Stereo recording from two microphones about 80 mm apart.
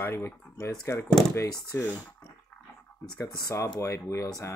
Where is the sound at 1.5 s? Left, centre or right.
Left.